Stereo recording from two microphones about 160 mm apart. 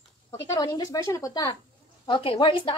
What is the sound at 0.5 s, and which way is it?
Speech, 20° left (ahead or behind).